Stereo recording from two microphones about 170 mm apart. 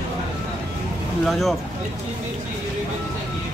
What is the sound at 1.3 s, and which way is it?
Speech, centre (ahead or behind).